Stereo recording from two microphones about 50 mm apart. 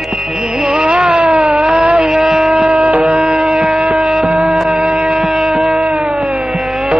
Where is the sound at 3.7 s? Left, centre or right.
Centre.